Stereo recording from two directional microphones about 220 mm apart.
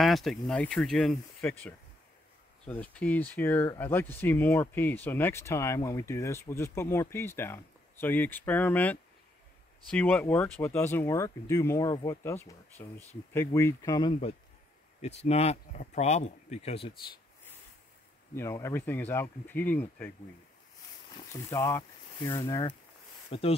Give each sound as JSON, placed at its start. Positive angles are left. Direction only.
{"t": 0.0, "sound": "speech", "side_deg": 0}
{"t": 2.6, "sound": "speech", "side_deg": 5}
{"t": 18.3, "sound": "speech", "side_deg": 10}
{"t": 21.3, "sound": "speech", "side_deg": 15}